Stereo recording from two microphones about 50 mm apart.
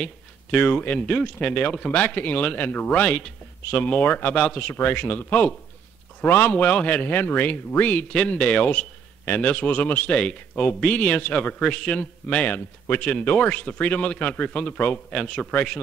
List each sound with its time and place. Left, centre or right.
0.0 s speech: centre
1.9 s speech: left
6.2 s speech: left
6.5 s speech: left
10.1 s speech: centre
12.5 s speech: left